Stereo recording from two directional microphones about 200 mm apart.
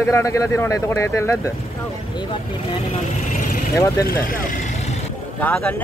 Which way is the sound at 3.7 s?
15° left (ahead or behind).